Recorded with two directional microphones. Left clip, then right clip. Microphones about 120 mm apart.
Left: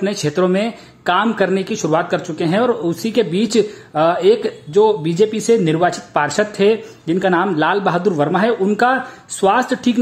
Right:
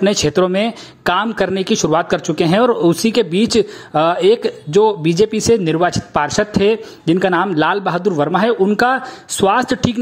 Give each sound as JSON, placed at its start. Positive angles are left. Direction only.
{"t": 0.0, "sound": "speech", "side_deg": -45}
{"t": 3.1, "sound": "speech", "side_deg": -40}